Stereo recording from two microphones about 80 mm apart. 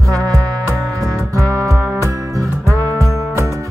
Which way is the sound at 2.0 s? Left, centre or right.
Right.